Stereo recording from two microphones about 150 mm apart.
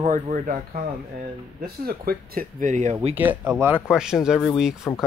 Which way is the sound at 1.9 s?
80° right.